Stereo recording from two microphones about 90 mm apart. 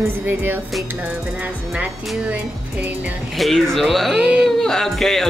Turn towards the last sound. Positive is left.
turn(degrees=5)  # may be behind; listen again after turning